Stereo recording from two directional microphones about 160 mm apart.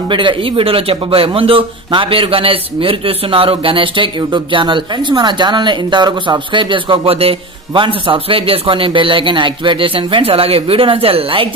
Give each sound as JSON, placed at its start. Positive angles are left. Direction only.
{"t": 0.1, "sound": "a man's voice", "side_deg": -30}